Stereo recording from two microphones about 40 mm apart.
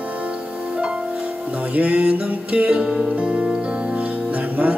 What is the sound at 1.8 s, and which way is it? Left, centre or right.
Music, right.